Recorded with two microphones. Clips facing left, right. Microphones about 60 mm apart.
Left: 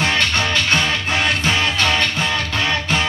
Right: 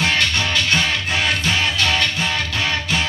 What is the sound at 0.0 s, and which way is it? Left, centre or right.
Music, left.